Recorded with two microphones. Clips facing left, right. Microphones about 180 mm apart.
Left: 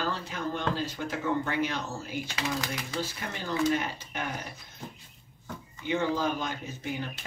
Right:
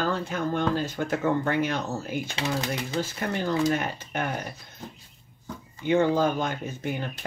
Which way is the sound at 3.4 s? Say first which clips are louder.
Right 2 dB; 50° right (ahead or behind).